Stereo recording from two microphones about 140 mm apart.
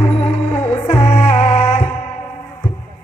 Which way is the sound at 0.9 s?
50° left (ahead or behind).